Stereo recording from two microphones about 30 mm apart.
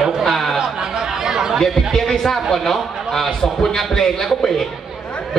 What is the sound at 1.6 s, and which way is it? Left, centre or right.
A man's voice, centre.